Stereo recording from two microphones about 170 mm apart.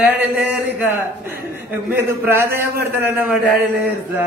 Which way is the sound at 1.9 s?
15° right (ahead or behind).